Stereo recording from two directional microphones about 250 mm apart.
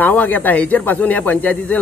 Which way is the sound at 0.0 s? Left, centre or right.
Centre.